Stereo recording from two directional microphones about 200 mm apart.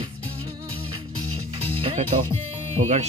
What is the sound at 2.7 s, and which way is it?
Speech, 35° right (ahead or behind).